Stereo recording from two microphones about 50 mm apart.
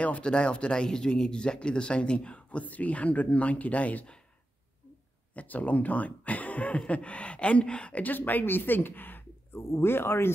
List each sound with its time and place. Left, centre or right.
0.0 s speech: left
5.3 s speech: left
8.0 s speech: left
9.6 s speech: left